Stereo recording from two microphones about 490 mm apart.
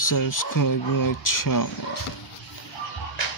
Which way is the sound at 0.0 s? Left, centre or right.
Left.